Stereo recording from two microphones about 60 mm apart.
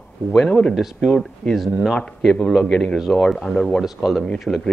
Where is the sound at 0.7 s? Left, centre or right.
Centre.